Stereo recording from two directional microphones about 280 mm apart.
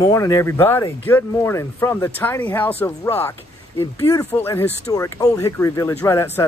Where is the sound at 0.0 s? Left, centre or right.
Centre.